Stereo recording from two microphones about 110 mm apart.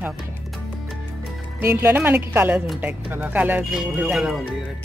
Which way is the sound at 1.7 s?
20° right (ahead or behind).